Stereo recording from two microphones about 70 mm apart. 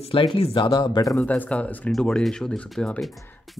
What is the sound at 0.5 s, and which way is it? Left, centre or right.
Speech, left.